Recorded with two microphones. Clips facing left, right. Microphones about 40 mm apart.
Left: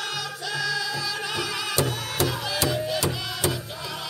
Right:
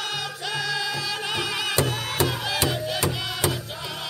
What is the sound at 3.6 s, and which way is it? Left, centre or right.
Music, right.